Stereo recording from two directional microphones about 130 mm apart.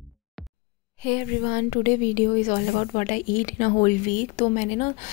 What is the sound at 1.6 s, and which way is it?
A woman's voice, 80° left.